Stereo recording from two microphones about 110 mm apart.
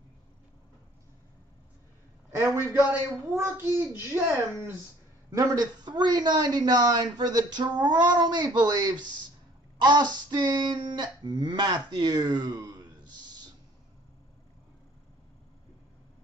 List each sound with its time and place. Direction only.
2.3 s a child's voice: 25° right (ahead or behind)
5.3 s speech: 30° right (ahead or behind)